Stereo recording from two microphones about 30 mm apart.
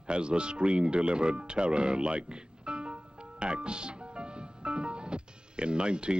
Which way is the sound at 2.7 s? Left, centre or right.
Right.